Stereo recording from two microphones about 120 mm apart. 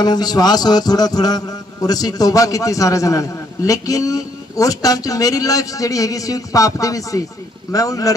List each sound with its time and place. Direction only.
0.0 s music: 35° left (ahead or behind)